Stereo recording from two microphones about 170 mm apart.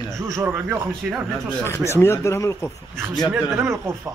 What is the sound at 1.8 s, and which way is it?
Speech, 15° left (ahead or behind).